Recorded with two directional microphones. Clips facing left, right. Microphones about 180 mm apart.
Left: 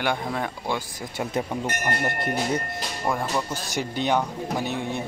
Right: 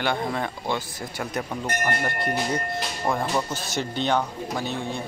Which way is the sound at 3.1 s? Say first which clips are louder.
Right 1 dB; 10° left (ahead or behind).